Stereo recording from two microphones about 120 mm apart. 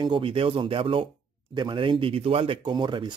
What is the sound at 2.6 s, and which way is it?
Speech, 40° right (ahead or behind).